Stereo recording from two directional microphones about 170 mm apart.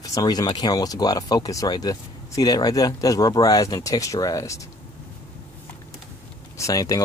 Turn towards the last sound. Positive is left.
turn(degrees=20)  # may be behind; listen again after turning